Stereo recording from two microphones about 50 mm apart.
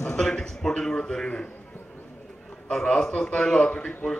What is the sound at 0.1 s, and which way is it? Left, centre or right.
A man's voice, centre.